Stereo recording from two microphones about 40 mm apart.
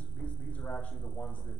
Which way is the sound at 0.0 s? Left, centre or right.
Left.